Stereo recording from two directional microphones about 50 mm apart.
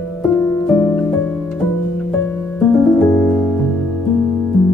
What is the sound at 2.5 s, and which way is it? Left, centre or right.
Music, left.